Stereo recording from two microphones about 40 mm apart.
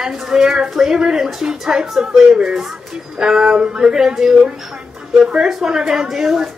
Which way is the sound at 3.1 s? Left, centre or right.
Centre.